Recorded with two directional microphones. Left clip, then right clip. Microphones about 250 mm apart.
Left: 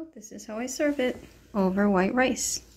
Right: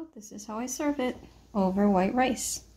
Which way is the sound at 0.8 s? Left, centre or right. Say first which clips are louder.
Left 5 dB; centre.